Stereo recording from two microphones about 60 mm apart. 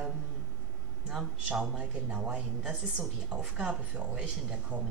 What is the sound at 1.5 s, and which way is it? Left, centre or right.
A woman's voice, centre.